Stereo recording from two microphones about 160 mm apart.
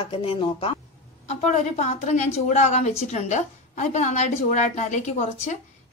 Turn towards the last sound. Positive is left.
turn(degrees=45)  # may be behind; listen again after turning